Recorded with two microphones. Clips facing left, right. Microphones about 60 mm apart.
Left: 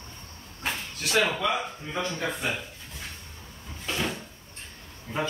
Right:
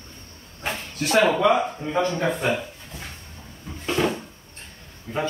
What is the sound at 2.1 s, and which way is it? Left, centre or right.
Speech, centre.